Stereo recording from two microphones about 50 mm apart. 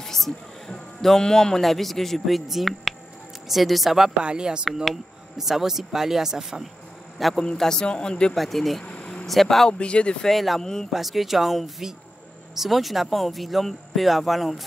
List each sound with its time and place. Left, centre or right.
0.0 s speech: centre
4.2 s speech: centre
5.4 s speech: centre
7.2 s a man's voice: centre
7.5 s speech: centre
8.4 s speech: centre
8.8 s insect: centre
9.3 s speech: centre
9.7 s speech: left
10.2 s speech: centre
10.6 s speech: centre
10.9 s speech: centre